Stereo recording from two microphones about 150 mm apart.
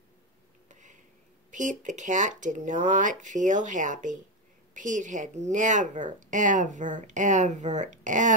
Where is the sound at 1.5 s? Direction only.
55° right (ahead or behind).